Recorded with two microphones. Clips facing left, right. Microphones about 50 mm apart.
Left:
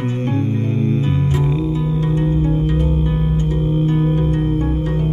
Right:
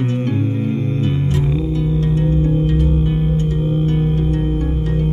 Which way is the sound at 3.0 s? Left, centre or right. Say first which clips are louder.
Right 1 dB; centre.